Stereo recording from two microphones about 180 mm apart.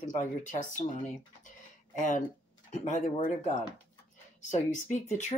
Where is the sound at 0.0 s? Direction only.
45° left (ahead or behind).